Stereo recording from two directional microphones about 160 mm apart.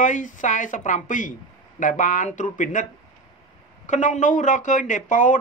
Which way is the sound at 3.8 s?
50° left (ahead or behind).